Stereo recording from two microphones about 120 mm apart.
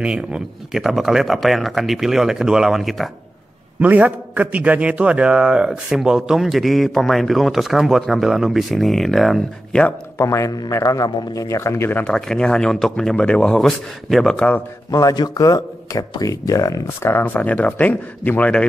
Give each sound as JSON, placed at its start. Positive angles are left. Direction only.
{"t": 0.0, "sound": "a man's voice", "side_deg": -5}
{"t": 3.8, "sound": "a man's voice", "side_deg": -15}
{"t": 10.1, "sound": "speech", "side_deg": 25}
{"t": 12.0, "sound": "speech", "side_deg": 5}
{"t": 14.9, "sound": "speech", "side_deg": 30}